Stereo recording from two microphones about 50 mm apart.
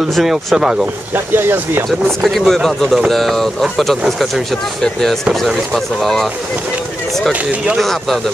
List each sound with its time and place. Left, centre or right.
0.1 s speech: centre
1.1 s speech: right
2.2 s speech: centre
5.3 s speech: centre
7.8 s speech: centre